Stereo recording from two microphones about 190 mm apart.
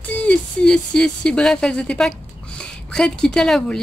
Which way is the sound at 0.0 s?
5° left (ahead or behind).